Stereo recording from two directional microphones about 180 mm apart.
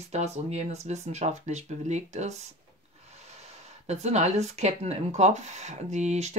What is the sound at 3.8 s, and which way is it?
Speech, 40° right (ahead or behind).